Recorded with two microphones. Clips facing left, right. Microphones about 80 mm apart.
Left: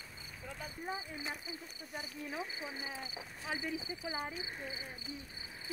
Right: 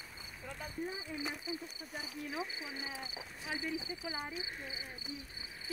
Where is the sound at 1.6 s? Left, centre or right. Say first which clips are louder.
Right 1 dB; centre.